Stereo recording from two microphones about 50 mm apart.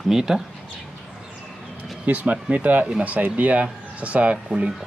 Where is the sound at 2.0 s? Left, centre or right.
Right.